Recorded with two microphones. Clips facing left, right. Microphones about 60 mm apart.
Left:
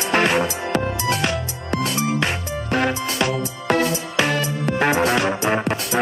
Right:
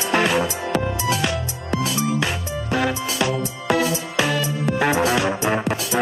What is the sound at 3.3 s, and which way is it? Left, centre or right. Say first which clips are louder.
Music: even; centre.